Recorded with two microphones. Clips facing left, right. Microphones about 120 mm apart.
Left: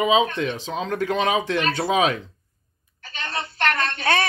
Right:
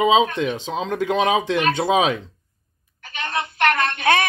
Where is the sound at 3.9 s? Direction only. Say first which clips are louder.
Right 3 dB; 15° right (ahead or behind).